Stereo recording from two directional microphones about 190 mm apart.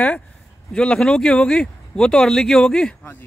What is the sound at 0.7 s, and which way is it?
Speech, 5° left (ahead or behind).